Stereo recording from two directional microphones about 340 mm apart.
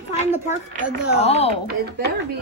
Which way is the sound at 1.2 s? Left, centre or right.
Centre.